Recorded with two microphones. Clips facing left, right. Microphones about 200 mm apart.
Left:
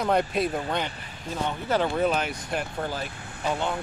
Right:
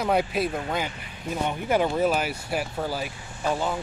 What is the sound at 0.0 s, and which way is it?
Speech, 5° right (ahead or behind).